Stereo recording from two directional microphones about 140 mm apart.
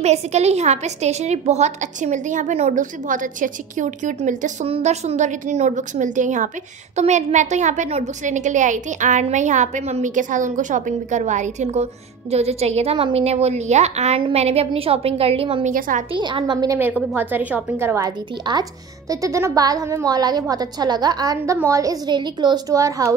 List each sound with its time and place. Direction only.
0.0 s a woman's voice: 50° right (ahead or behind)
4.6 s a woman's voice: 50° right (ahead or behind)
15.6 s a woman's voice: 65° right (ahead or behind)
16.1 s a woman's voice: 35° right (ahead or behind)
17.1 s speech: 15° right (ahead or behind)